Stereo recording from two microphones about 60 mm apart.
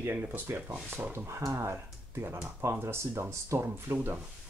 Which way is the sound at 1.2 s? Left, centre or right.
Right.